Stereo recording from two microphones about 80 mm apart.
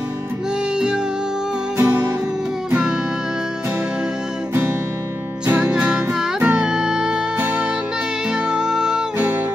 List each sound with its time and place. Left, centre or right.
1.8 s music: right
5.5 s music: centre
7.3 s music: centre